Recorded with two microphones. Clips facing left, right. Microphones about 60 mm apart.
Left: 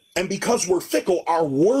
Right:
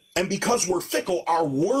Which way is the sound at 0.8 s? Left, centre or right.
Left.